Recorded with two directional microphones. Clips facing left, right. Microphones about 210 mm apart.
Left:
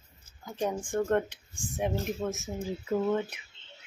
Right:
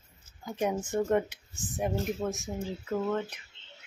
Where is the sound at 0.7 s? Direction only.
5° right (ahead or behind).